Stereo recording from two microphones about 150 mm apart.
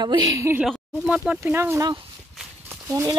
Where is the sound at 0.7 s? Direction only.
Centre (ahead or behind).